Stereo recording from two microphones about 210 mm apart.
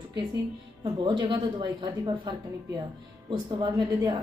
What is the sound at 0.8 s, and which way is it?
A woman's voice, 20° right (ahead or behind).